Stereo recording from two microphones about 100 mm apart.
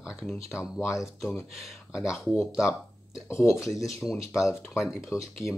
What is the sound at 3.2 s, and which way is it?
Speech, 25° left (ahead or behind).